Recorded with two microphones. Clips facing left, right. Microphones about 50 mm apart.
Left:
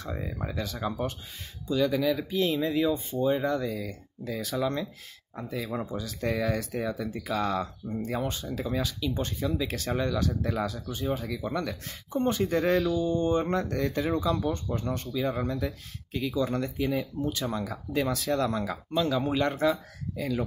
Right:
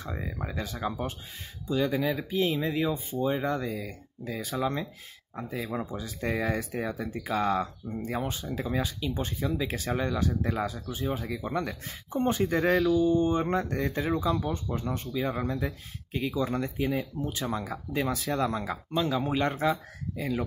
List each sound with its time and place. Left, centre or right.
0.0 s speech: centre
1.7 s speech: right
9.3 s speech: centre